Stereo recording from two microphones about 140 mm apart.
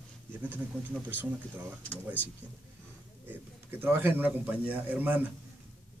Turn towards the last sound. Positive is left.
turn(degrees=-10)  # may be behind; listen again after turning